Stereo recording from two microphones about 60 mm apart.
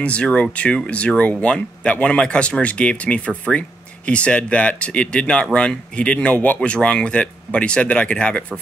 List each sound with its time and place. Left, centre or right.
0.0 s speech: centre